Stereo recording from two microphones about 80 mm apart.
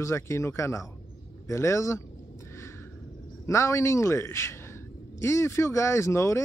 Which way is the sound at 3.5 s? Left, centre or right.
Left.